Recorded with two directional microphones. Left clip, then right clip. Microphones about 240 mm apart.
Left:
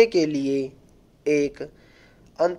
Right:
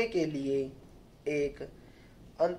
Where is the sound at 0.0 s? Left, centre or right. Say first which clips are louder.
Left 12 dB; left.